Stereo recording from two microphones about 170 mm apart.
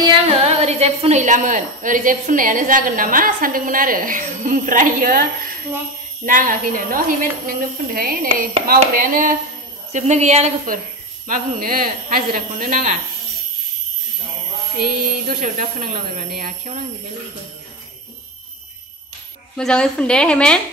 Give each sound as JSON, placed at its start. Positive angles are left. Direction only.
{"t": 0.0, "sound": "a woman's voice", "side_deg": -35}
{"t": 6.2, "sound": "a woman's voice", "side_deg": -50}
{"t": 9.9, "sound": "a woman's voice", "side_deg": -45}
{"t": 11.2, "sound": "a woman's voice", "side_deg": -55}
{"t": 14.8, "sound": "a woman's voice", "side_deg": -50}
{"t": 19.5, "sound": "a woman's voice", "side_deg": 5}